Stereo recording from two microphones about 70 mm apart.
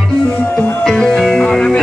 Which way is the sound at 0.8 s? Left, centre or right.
Centre.